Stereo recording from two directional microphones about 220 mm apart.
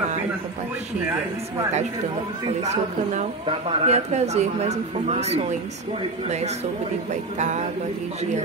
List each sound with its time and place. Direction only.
2.6 s speech: 30° right (ahead or behind)
7.3 s music: 30° right (ahead or behind)